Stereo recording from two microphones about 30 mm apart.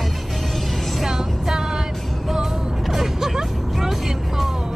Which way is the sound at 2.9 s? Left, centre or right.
Centre.